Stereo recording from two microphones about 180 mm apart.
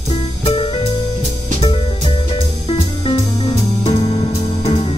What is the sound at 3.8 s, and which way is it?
Music, 30° left (ahead or behind).